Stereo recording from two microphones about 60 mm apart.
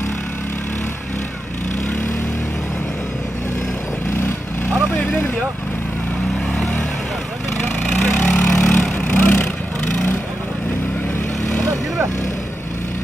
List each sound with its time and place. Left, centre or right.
4.7 s vehicle: left
7.8 s vehicle: left
8.5 s vehicle: centre
8.9 s vehicle: left